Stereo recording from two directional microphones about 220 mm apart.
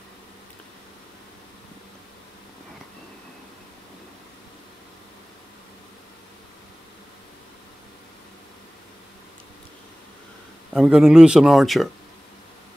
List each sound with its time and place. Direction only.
10.7 s speech: centre (ahead or behind)